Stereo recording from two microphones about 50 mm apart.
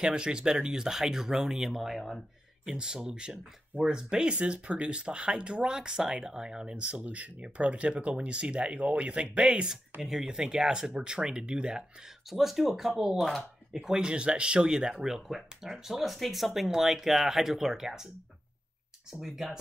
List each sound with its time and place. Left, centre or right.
0.0 s speech: centre
2.6 s speech: centre
12.3 s speech: centre
19.0 s speech: centre